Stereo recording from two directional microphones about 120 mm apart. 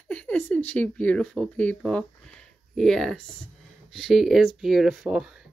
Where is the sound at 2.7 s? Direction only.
5° left (ahead or behind).